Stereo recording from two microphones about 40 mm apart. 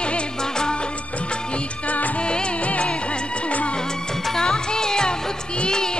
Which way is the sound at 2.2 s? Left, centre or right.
Left.